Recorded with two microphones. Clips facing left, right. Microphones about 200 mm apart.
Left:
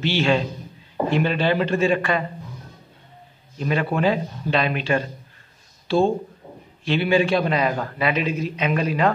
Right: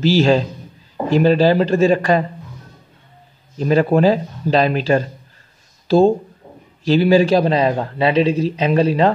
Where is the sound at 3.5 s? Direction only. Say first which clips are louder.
Right 8 dB; 35° right (ahead or behind).